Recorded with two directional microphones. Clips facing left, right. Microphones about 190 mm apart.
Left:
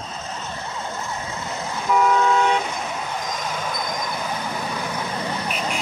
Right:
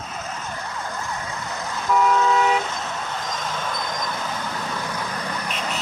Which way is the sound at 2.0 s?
Centre (ahead or behind).